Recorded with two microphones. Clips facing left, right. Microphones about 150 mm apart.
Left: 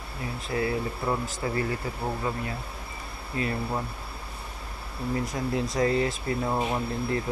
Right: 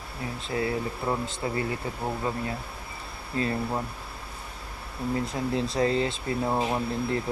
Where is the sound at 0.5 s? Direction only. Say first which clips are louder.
Left 1 dB; 25° right (ahead or behind).